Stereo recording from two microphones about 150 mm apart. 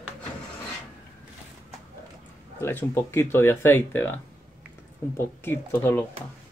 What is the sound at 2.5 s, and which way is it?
Speech, 15° left (ahead or behind).